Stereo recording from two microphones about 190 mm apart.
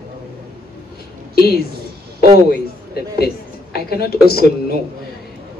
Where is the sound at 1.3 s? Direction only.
55° left (ahead or behind).